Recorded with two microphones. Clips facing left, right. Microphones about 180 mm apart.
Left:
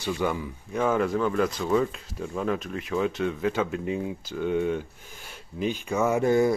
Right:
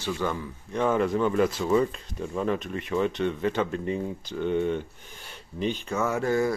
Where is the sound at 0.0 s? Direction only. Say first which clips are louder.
Left 2 dB; 10° left (ahead or behind).